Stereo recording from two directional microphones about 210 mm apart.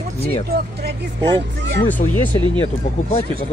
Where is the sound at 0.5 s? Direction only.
50° right (ahead or behind).